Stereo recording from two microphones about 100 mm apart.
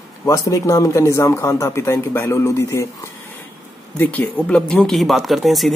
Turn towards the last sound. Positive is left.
turn(degrees=0)  # may be behind; listen again after turning